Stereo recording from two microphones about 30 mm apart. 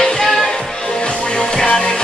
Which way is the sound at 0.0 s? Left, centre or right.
Centre.